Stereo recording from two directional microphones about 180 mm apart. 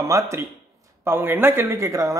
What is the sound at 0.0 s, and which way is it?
Speech, 15° right (ahead or behind).